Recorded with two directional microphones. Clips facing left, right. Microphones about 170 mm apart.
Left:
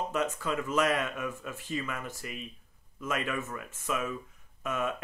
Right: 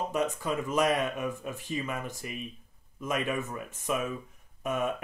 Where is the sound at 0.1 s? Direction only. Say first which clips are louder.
Right 1 dB; 15° right (ahead or behind).